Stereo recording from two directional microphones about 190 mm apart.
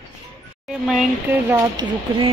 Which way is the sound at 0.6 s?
Centre (ahead or behind).